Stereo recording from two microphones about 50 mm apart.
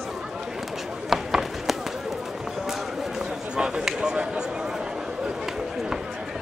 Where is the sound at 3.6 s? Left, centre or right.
Centre.